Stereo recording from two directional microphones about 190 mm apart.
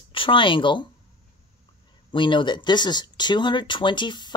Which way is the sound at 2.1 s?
25° left (ahead or behind).